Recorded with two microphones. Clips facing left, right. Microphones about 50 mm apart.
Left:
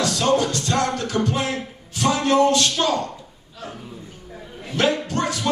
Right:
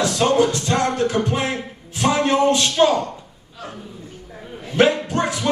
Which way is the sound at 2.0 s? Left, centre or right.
Right.